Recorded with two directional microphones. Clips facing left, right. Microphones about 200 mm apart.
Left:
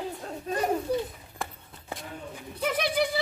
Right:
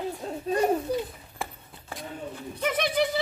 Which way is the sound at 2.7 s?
5° left (ahead or behind).